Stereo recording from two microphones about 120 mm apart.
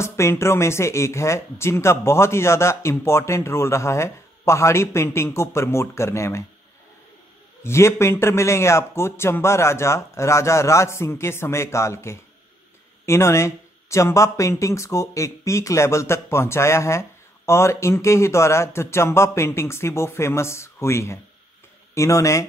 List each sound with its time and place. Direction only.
0.0 s speech: 20° left (ahead or behind)
7.6 s speech: 20° left (ahead or behind)